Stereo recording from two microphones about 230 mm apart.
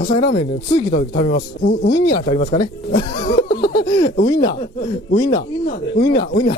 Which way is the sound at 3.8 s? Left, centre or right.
Centre.